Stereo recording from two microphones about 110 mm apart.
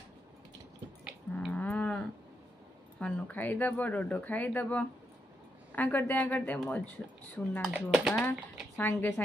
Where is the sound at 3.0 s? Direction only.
15° left (ahead or behind).